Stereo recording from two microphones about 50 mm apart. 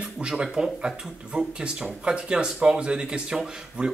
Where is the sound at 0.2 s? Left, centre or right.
Centre.